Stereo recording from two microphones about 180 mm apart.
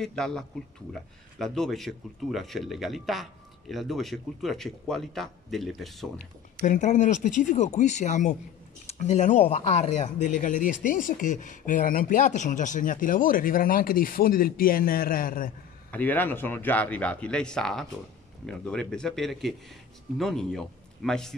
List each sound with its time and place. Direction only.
0.0 s speech: 5° left (ahead or behind)
6.6 s speech: 40° left (ahead or behind)
15.9 s a man's voice: 10° left (ahead or behind)